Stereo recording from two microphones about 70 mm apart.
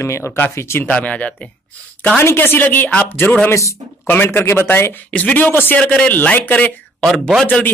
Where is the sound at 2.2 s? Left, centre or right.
Left.